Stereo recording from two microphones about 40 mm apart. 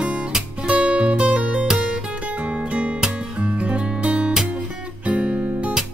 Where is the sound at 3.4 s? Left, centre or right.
Right.